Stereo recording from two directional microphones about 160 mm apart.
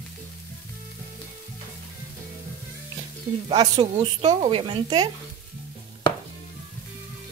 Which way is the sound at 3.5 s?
30° right (ahead or behind).